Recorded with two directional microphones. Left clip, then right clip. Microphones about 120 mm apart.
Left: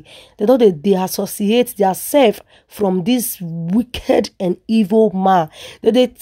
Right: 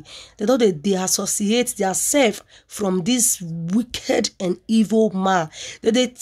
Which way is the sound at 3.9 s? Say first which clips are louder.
Left 6 dB; 60° left (ahead or behind).